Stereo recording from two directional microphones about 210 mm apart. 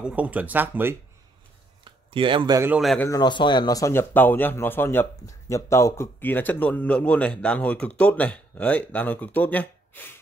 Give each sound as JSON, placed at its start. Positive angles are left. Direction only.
{"t": 0.0, "sound": "speech", "side_deg": -5}
{"t": 1.9, "sound": "speech", "side_deg": -25}
{"t": 2.8, "sound": "speech", "side_deg": 0}
{"t": 3.1, "sound": "speech", "side_deg": 20}